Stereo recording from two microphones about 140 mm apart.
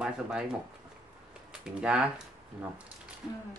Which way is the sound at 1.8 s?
5° right (ahead or behind).